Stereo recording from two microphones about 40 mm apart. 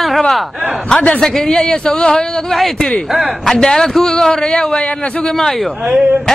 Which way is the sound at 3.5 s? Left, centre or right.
Centre.